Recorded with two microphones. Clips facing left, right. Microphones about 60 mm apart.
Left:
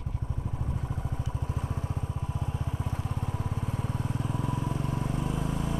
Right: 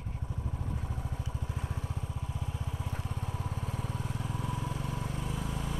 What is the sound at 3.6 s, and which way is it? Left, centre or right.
Vehicle, left.